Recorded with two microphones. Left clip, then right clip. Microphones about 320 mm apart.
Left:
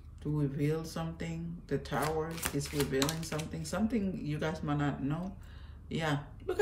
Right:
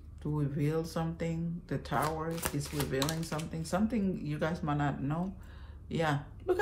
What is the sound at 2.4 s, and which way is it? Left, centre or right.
Speech, centre.